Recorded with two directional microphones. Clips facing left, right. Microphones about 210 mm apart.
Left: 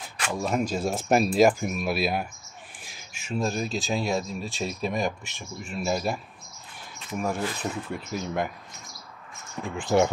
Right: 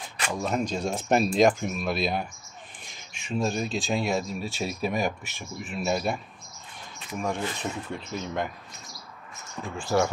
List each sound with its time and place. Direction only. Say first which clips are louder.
0.2 s speech: left 1 dB; 5° left (ahead or behind)
9.8 s speech: left 3 dB; 20° left (ahead or behind)